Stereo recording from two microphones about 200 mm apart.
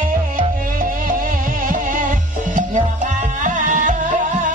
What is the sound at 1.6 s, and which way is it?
Music, 40° right (ahead or behind).